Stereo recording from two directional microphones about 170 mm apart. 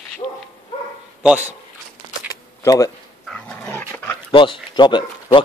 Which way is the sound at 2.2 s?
20° left (ahead or behind).